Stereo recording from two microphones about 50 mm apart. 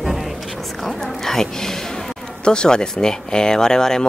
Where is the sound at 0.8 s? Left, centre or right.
Centre.